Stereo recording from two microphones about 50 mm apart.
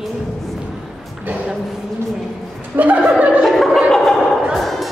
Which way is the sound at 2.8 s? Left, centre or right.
Right.